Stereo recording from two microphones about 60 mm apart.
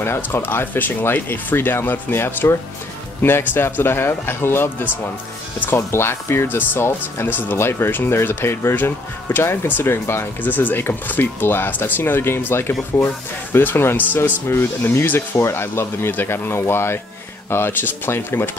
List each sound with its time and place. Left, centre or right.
0.0 s speech: left